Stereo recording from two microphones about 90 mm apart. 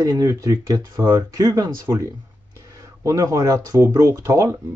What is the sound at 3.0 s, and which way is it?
Speech, 40° right (ahead or behind).